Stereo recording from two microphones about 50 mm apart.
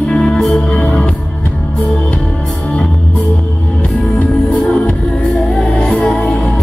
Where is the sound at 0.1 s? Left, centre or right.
Centre.